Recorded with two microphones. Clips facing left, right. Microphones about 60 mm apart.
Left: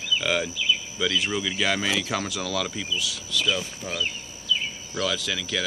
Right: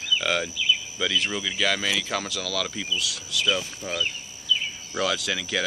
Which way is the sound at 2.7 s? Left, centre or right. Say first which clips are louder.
Even; centre.